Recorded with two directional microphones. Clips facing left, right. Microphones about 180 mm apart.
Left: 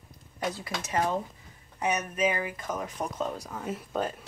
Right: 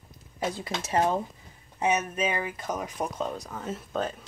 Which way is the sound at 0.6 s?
25° right (ahead or behind).